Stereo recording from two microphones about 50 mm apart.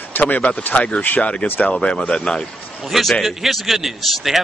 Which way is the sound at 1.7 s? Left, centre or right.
Left.